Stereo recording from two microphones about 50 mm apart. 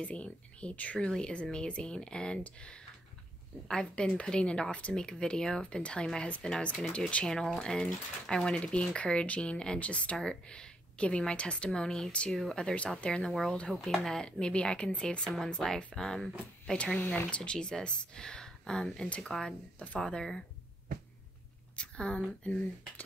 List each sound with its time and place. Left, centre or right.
0.0 s speech: left
13.0 s speech: left
16.7 s speech: left
21.7 s speech: left